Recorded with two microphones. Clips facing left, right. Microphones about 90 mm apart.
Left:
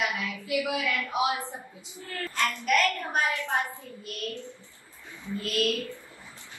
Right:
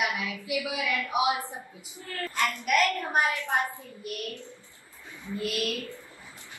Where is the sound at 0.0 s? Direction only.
20° right (ahead or behind).